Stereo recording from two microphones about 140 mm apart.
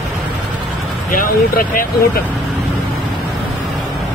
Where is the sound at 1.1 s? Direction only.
90° left.